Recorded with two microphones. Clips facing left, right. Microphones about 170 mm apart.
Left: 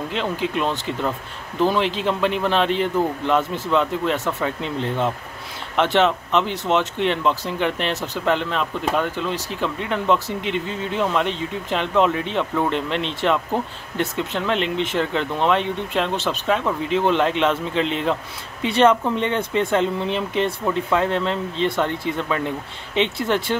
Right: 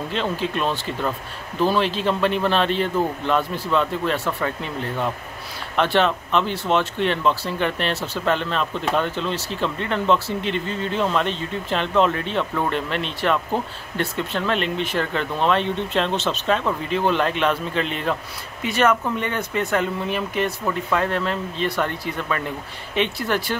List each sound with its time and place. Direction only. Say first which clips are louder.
0.1 s speech: even; 15° left (ahead or behind)